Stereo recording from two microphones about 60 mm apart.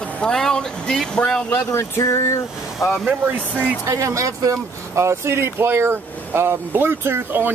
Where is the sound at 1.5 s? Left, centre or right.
Left.